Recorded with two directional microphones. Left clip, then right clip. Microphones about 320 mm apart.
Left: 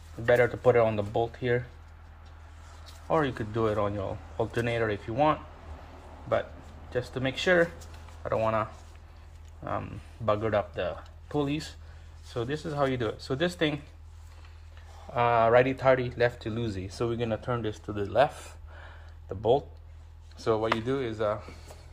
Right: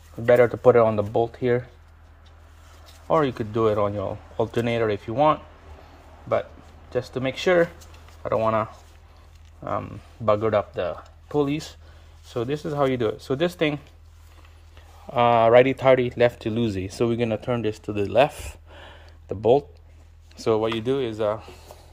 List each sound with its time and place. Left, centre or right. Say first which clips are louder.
0.3 s speech: right 6 dB; right
3.1 s speech: right 6 dB; right
6.9 s speech: right 5 dB; right
15.0 s speech: right 6 dB; right